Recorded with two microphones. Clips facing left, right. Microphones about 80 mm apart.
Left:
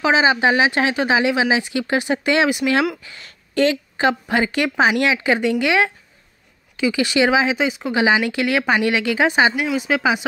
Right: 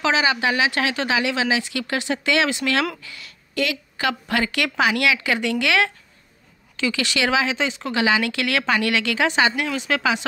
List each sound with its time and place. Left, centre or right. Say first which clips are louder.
0.0 s speech: left 4 dB; left
3.1 s speech: even; left; by 10.2 s centre